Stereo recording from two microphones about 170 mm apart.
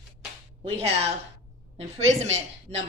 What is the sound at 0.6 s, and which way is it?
Speech, 40° right (ahead or behind).